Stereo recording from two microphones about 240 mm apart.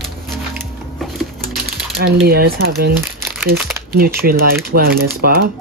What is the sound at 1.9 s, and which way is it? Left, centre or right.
Speech, right.